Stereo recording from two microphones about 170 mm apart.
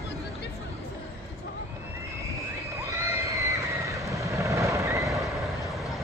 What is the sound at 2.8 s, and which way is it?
Neigh, 20° right (ahead or behind).